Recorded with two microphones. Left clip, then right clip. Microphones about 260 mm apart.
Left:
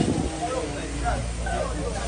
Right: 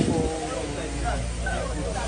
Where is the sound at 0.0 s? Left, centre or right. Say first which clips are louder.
Right 1 dB; centre.